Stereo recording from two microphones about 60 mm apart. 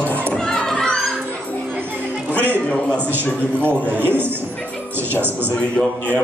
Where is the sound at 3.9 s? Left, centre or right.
Right.